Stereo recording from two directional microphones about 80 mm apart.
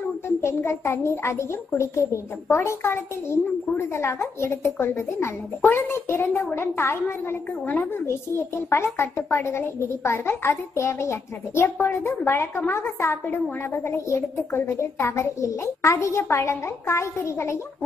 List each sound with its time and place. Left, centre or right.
0.4 s a woman's voice: left
2.5 s a woman's voice: left